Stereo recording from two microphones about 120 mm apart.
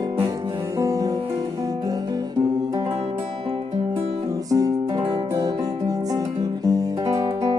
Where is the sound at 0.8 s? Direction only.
30° right (ahead or behind).